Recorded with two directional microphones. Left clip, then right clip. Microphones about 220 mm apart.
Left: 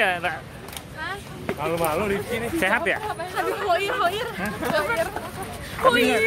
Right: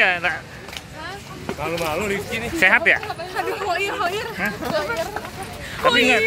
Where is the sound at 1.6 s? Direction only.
40° left (ahead or behind).